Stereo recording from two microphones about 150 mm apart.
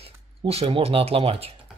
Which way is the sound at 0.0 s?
40° right (ahead or behind).